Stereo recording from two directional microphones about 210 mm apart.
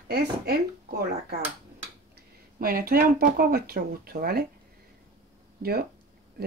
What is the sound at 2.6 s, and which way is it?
Speech, 45° right (ahead or behind).